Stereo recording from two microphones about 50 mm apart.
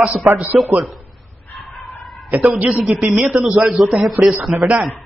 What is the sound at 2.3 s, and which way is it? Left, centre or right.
Speech, right.